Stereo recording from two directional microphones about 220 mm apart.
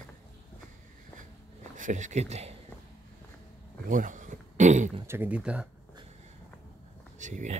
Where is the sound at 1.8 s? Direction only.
35° right (ahead or behind).